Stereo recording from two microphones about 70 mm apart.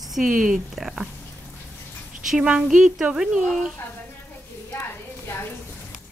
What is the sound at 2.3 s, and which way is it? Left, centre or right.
Speech, centre.